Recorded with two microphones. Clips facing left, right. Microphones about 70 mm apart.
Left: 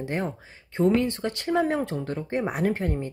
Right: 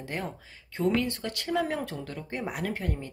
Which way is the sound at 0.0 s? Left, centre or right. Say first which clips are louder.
Left 6 dB; left.